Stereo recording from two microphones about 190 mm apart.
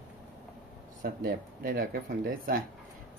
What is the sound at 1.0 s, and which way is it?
Speech, 50° right (ahead or behind).